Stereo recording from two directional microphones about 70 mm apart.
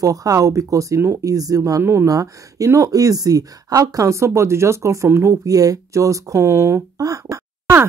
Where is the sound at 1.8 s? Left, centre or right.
Right.